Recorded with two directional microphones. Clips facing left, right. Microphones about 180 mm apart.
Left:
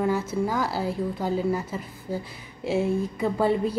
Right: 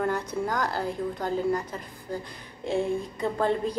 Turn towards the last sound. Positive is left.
turn(degrees=5)  # may be behind; listen again after turning